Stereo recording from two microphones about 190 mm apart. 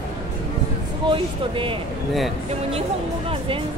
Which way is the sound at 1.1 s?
25° right (ahead or behind).